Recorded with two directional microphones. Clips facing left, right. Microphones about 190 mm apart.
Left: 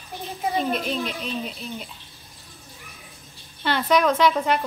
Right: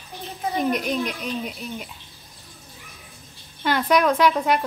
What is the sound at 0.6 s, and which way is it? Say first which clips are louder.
A woman's voice: right 2 dB; 15° right (ahead or behind).